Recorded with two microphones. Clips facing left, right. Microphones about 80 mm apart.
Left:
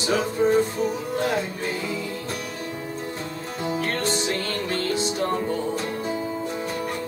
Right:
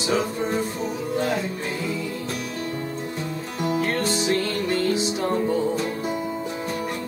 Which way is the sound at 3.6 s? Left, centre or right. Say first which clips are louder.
Right 2 dB; centre.